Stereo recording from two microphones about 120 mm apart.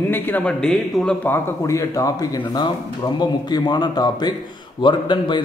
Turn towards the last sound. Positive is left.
turn(degrees=40)  # may be behind; listen again after turning